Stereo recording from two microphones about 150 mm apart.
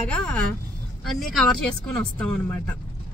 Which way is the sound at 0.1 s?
10° left (ahead or behind).